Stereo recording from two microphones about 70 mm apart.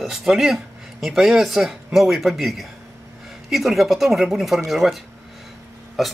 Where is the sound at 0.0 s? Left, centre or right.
Centre.